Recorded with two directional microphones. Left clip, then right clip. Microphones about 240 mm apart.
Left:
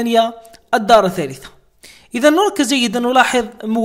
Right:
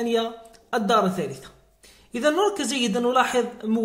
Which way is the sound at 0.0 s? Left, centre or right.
Left.